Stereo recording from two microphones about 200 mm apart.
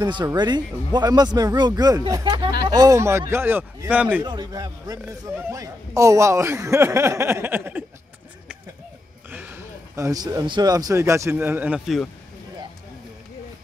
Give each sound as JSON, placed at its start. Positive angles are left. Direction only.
{"t": 0.0, "sound": "a man's voice", "side_deg": -20}
{"t": 4.2, "sound": "a man's voice", "side_deg": -20}
{"t": 9.3, "sound": "speech", "side_deg": -10}